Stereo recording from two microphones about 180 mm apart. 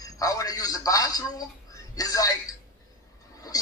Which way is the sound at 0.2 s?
20° left (ahead or behind).